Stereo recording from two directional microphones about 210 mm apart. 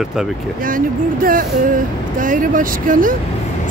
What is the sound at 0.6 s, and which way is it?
Music, 40° right (ahead or behind).